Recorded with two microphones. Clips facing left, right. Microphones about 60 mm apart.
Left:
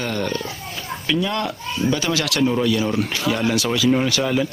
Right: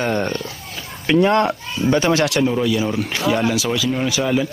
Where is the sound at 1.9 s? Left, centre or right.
Right.